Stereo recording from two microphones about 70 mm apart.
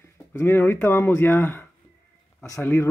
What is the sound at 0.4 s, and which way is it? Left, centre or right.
Speech, left.